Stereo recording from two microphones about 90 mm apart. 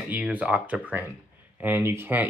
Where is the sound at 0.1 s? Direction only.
15° right (ahead or behind).